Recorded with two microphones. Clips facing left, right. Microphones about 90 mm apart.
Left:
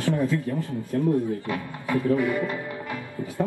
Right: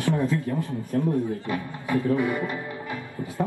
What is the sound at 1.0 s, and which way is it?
Speech, 20° right (ahead or behind).